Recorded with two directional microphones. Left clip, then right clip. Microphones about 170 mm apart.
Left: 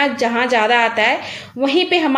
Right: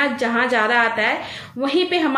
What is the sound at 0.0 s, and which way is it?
A woman's voice, 30° left (ahead or behind).